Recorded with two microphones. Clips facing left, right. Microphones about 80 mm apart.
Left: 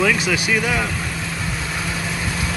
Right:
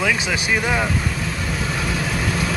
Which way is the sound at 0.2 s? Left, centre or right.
Right.